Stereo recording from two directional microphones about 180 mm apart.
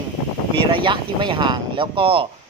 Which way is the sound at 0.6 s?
25° right (ahead or behind).